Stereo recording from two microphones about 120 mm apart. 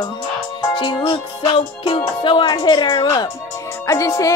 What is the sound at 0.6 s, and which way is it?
Music, 40° left (ahead or behind).